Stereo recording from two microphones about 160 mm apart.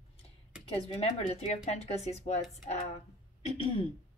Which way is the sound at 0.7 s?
40° left (ahead or behind).